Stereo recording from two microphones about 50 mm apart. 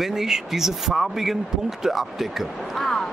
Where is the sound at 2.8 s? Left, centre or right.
Centre.